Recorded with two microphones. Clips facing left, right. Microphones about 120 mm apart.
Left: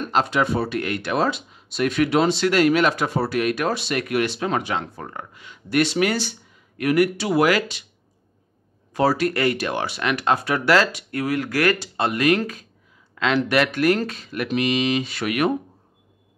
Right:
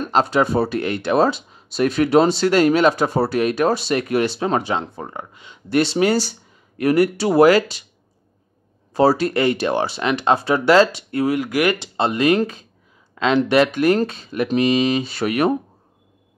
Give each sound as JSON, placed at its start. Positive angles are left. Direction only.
{"t": 0.0, "sound": "speech", "side_deg": -35}
{"t": 8.9, "sound": "speech", "side_deg": -30}